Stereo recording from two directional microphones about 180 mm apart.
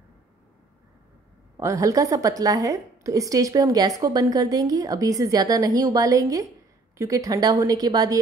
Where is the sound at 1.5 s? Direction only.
15° right (ahead or behind).